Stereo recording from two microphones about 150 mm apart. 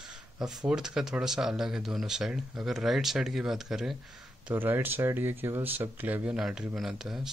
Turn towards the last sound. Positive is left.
turn(degrees=-5)  # may be behind; listen again after turning